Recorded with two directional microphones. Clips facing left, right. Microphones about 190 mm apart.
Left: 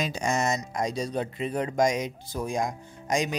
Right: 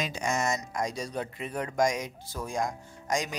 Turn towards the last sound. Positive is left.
turn(degrees=20)  # may be behind; listen again after turning